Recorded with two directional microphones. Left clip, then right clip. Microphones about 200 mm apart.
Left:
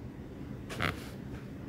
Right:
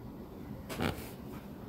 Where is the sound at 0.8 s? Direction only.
25° right (ahead or behind).